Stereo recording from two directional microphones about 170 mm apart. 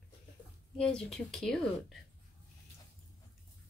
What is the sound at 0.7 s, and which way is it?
A woman's voice, 5° left (ahead or behind).